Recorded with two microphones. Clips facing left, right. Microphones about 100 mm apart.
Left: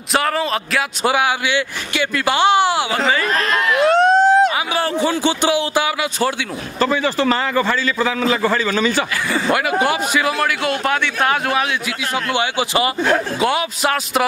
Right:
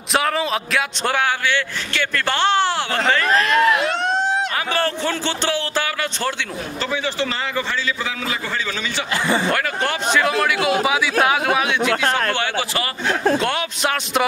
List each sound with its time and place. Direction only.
0.1 s a man's voice: centre (ahead or behind)
3.3 s crowd: 40° left (ahead or behind)
4.7 s a man's voice: 10° left (ahead or behind)
6.8 s a man's voice: 45° left (ahead or behind)
9.5 s a man's voice: 10° left (ahead or behind)
12.4 s a man's voice: 15° left (ahead or behind)
13.4 s a man's voice: 5° left (ahead or behind)